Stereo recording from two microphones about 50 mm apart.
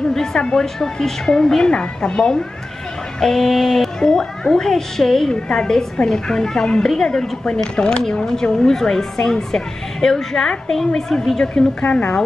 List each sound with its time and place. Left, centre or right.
0.1 s a sound: centre
0.4 s a woman's voice: centre
0.7 s a woman's voice: centre
11.9 s a woman's voice: left